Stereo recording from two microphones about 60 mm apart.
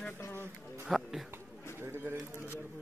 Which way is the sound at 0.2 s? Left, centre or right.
Left.